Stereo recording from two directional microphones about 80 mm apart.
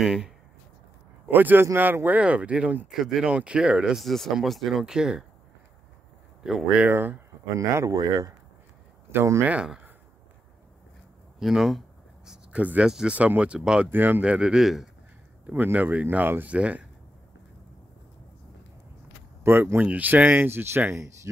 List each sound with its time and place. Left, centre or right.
0.0 s speech: centre
1.2 s speech: right
2.9 s speech: centre
6.4 s speech: centre
6.8 s speech: right
7.5 s speech: right
9.1 s speech: right
9.4 s speech: centre
11.3 s speech: centre
12.3 s speech: centre
13.8 s speech: right
14.2 s speech: centre
15.4 s speech: right
19.4 s speech: right